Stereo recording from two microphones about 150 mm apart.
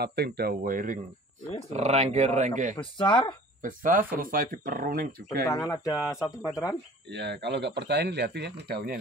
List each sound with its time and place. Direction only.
0.0 s speech: 90° right; by 1.0 s 65° right (ahead or behind)
1.7 s speech: 50° right (ahead or behind)
2.7 s speech: 30° left (ahead or behind)
3.6 s speech: 65° right (ahead or behind)
5.5 s speech: 20° left (ahead or behind)
5.9 s speech: 5° right (ahead or behind)
6.2 s speech: 25° left (ahead or behind)
7.3 s speech: 90° right